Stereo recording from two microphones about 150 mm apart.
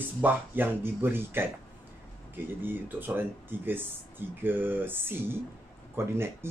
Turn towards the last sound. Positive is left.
turn(degrees=-15)  # may be behind; listen again after turning